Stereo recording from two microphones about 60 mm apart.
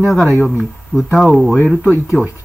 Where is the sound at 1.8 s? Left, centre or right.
Left.